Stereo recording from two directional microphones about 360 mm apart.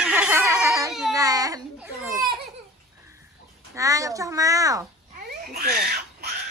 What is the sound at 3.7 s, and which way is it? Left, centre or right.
A child's voice, centre.